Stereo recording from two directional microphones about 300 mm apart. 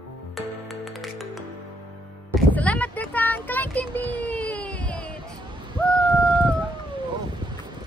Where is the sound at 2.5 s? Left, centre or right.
Centre.